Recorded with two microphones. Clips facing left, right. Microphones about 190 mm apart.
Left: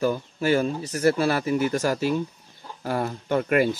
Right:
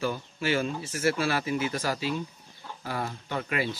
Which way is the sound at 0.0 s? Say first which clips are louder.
Left 6 dB; 45° left (ahead or behind).